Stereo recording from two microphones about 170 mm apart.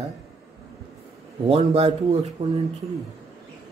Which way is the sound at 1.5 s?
40° right (ahead or behind).